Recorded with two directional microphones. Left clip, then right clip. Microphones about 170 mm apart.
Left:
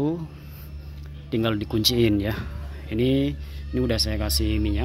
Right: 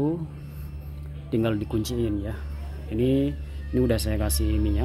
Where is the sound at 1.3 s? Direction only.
5° left (ahead or behind).